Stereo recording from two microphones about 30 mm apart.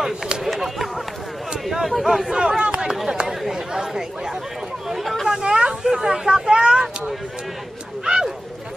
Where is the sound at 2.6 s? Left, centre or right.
Right.